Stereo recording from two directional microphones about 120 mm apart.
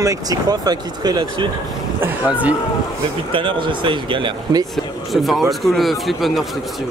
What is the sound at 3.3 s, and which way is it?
Speech, 45° right (ahead or behind).